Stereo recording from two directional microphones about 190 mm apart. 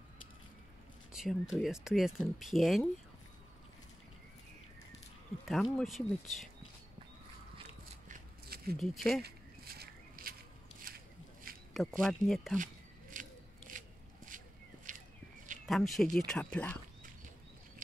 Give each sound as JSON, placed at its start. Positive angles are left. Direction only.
{"t": 1.1, "sound": "speech", "side_deg": -5}
{"t": 5.5, "sound": "speech", "side_deg": 0}
{"t": 8.1, "sound": "a sound", "side_deg": -50}
{"t": 8.7, "sound": "speech", "side_deg": 0}
{"t": 9.2, "sound": "a sound", "side_deg": -55}
{"t": 11.7, "sound": "speech", "side_deg": 0}
{"t": 13.1, "sound": "scissors", "side_deg": -45}
{"t": 15.6, "sound": "speech", "side_deg": 0}